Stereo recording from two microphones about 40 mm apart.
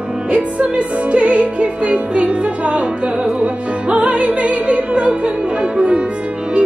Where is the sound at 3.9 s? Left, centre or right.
Right.